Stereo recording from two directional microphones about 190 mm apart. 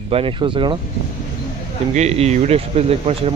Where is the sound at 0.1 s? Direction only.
30° right (ahead or behind).